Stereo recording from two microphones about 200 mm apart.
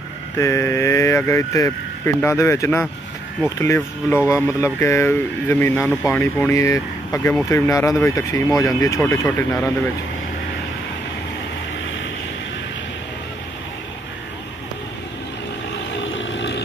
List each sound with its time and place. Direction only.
0.4 s speech: 15° left (ahead or behind)
16.0 s vehicle: 70° left (ahead or behind)